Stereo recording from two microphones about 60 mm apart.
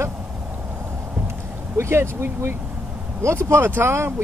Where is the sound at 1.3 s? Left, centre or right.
Right.